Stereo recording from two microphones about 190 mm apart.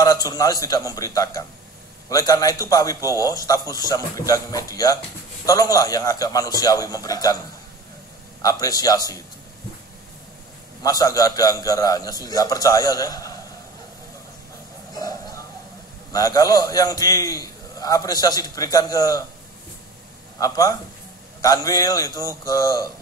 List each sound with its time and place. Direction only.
0.0 s a man's voice: 20° left (ahead or behind)
8.4 s a man's voice: 20° left (ahead or behind)
10.8 s a man's voice: 20° left (ahead or behind)
15.0 s a sound: 20° left (ahead or behind)
16.1 s a man's voice: 20° left (ahead or behind)
20.3 s a man's voice: 20° left (ahead or behind)